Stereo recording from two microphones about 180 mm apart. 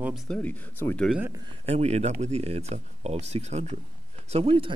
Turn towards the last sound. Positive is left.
turn(degrees=-30)  # may be behind; listen again after turning